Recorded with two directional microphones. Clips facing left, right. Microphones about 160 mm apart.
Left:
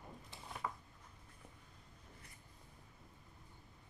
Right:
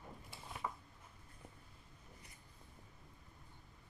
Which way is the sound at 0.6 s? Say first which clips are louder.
Even; 10° right (ahead or behind).